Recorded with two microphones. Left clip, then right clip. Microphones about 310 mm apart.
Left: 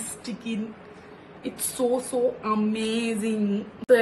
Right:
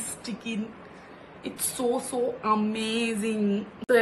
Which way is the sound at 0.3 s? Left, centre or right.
Centre.